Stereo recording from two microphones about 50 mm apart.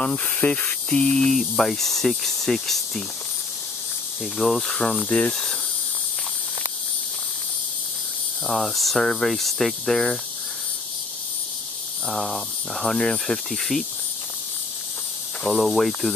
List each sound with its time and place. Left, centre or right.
0.0 s a sound: centre
0.4 s speech: left
0.8 s a sound: centre
1.3 s speech: centre
4.2 s speech: centre
5.3 s a sound: centre
8.5 s speech: centre
12.1 s speech: centre
15.5 s speech: centre